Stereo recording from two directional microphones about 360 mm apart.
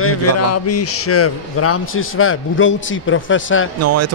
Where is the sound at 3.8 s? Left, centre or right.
Right.